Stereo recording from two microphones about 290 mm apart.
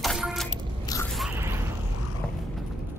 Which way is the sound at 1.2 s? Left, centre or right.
Centre.